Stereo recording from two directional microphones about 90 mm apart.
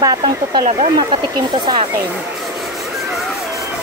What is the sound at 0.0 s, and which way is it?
Speech, 50° right (ahead or behind).